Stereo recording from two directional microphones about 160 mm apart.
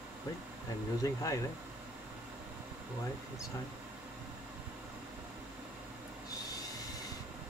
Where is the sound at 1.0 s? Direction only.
20° left (ahead or behind).